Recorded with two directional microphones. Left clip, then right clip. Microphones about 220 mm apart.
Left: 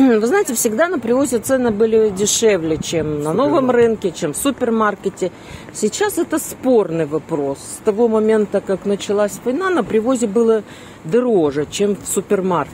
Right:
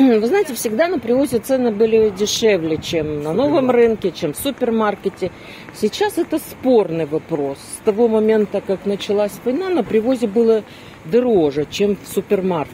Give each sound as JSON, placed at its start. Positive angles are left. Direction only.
{"t": 0.0, "sound": "speech", "side_deg": 20}